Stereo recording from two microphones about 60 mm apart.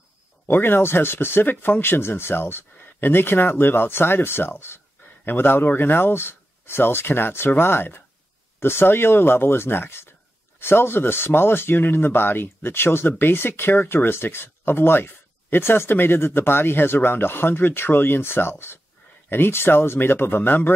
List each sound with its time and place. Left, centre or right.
0.5 s speech: left